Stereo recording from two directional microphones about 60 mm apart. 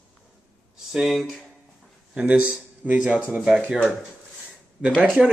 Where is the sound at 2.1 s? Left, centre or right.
Right.